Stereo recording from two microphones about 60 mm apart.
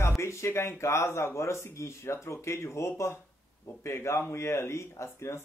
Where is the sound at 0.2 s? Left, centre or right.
Left.